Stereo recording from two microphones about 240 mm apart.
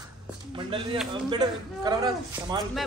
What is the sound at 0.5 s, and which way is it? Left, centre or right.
A man's voice, right.